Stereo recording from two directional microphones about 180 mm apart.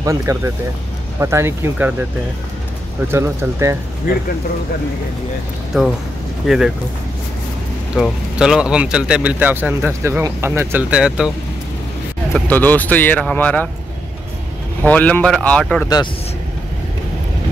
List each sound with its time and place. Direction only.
0.0 s a man's voice: 15° right (ahead or behind)
3.1 s a man's voice: 15° right (ahead or behind)
4.1 s speech: 50° left (ahead or behind)
5.7 s speech: centre (ahead or behind)
7.9 s a man's voice: 5° right (ahead or behind)
12.3 s speech: 5° left (ahead or behind)
14.8 s speech: 5° left (ahead or behind)